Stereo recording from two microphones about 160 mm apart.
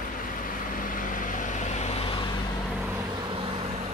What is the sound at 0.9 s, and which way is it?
Vehicle, 55° left (ahead or behind).